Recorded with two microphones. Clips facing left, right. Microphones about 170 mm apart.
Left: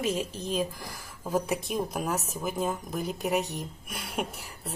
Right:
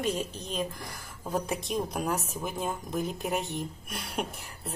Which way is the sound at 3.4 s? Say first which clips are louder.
Right 2 dB; 45° left (ahead or behind).